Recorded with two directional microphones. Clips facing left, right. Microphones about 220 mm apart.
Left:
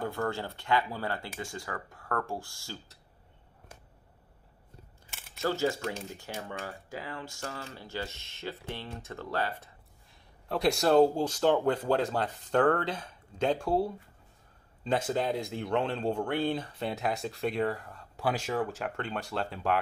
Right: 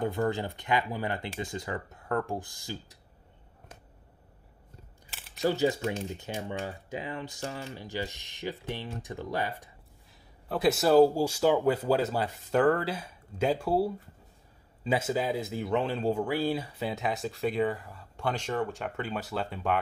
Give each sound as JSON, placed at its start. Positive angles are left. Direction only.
{"t": 0.0, "sound": "speech", "side_deg": -20}
{"t": 5.4, "sound": "speech", "side_deg": -15}
{"t": 10.5, "sound": "speech", "side_deg": -5}